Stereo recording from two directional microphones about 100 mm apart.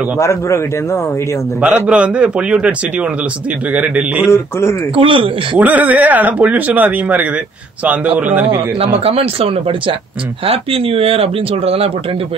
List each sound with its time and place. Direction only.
0.2 s speech: 30° left (ahead or behind)
1.9 s speech: 10° right (ahead or behind)
4.3 s speech: 25° left (ahead or behind)
4.9 s speech: 60° right (ahead or behind)
5.6 s speech: 15° right (ahead or behind)
8.7 s speech: 80° right